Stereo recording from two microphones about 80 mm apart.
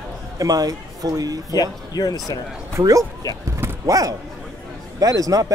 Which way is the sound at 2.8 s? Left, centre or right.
Right.